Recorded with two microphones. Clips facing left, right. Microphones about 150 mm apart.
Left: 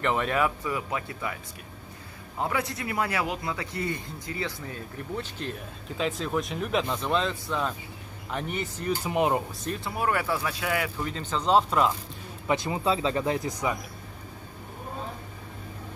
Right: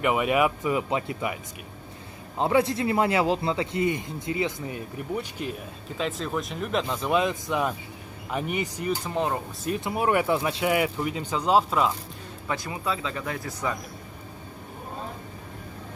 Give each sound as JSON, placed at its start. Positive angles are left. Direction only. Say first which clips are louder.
{"t": 0.0, "sound": "a man's voice", "louder": "right 3 dB", "side_deg": -10}
{"t": 9.0, "sound": "speech", "louder": "left 6 dB", "side_deg": 15}
{"t": 9.8, "sound": "speech", "louder": "right 4 dB", "side_deg": -20}
{"t": 12.4, "sound": "speech", "louder": "left 4 dB", "side_deg": 25}